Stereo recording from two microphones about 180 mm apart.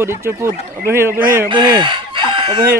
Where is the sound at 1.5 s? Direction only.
25° right (ahead or behind).